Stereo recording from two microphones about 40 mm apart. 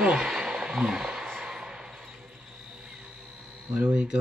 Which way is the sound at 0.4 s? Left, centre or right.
Centre.